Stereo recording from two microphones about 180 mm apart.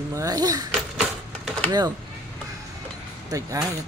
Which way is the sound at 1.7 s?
20° right (ahead or behind).